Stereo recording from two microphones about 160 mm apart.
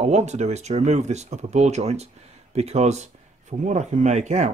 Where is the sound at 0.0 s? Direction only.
45° right (ahead or behind).